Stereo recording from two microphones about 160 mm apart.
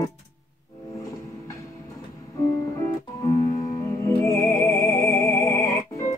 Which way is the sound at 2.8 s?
20° left (ahead or behind).